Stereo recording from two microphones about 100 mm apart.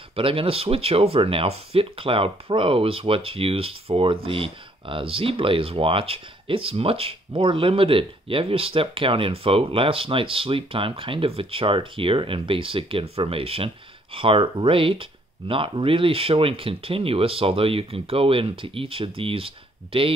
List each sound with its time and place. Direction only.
0.1 s speech: 65° right (ahead or behind)